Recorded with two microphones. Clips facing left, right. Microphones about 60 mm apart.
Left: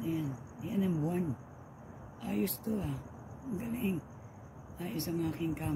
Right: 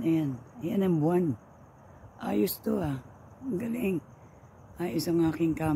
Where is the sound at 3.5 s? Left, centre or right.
Right.